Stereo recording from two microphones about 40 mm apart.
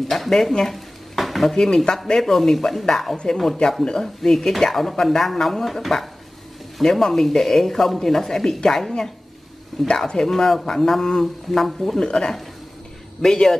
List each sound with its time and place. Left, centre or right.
0.1 s speech: centre
0.7 s dishes: centre
1.5 s speech: centre
10.0 s speech: centre
12.0 s speech: left